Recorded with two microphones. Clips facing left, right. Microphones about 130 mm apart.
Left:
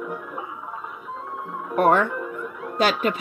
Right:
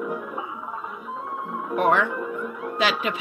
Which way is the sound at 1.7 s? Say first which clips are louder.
Left 2 dB; 45° left (ahead or behind).